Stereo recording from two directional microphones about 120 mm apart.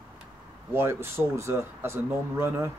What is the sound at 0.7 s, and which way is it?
Speech, 20° right (ahead or behind).